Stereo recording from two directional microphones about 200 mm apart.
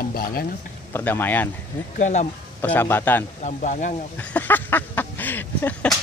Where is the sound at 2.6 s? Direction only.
10° left (ahead or behind).